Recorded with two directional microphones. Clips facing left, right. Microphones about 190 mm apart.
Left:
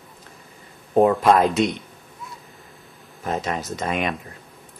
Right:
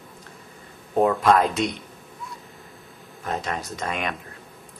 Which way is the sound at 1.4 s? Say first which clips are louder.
Left 4 dB; centre (ahead or behind).